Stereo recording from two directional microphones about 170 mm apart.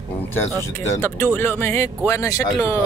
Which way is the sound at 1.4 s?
10° left (ahead or behind).